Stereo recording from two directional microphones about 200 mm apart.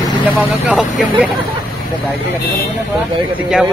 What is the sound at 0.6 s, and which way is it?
Speech, 5° right (ahead or behind).